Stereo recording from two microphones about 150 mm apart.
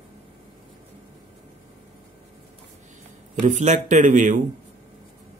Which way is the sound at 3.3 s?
55° right (ahead or behind).